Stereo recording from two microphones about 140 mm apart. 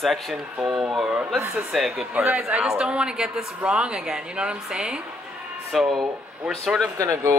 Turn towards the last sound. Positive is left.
turn(degrees=-20)  # may be behind; listen again after turning